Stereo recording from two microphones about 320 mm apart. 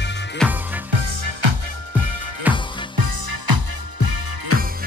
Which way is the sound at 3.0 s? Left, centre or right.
Right.